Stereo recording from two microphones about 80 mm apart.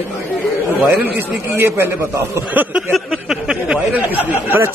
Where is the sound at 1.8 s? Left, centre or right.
Right.